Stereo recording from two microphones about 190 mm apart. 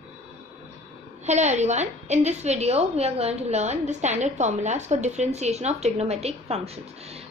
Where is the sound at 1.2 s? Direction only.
35° right (ahead or behind).